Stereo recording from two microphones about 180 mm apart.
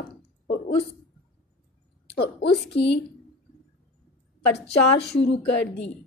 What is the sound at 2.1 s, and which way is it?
Speech, 70° left (ahead or behind).